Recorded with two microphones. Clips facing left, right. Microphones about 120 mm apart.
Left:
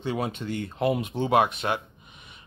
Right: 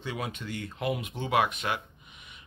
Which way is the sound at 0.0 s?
30° left (ahead or behind).